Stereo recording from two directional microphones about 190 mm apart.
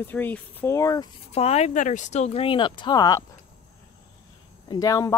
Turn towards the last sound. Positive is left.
turn(degrees=15)  # may be behind; listen again after turning